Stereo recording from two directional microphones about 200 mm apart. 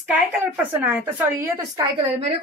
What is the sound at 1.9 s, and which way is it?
Speech, 30° right (ahead or behind).